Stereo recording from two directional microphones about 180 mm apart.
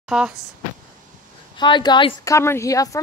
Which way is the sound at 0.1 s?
Centre (ahead or behind).